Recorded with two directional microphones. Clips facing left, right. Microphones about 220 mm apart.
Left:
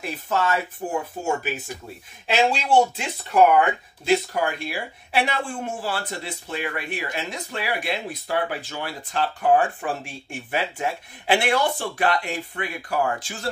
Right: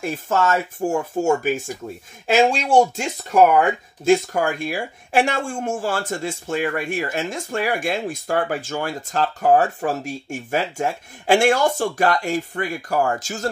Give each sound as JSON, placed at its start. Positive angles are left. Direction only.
{"t": 0.0, "sound": "speech", "side_deg": -45}